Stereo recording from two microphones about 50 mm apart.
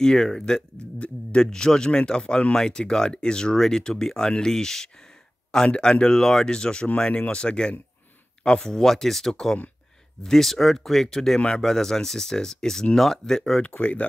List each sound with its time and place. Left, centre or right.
0.0 s speech: centre
13.6 s speech: left